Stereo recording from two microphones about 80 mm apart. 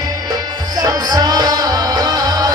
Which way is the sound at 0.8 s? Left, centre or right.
Right.